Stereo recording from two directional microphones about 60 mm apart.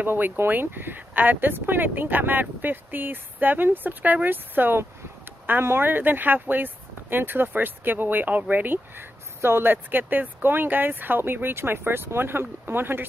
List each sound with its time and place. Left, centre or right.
0.0 s speech: right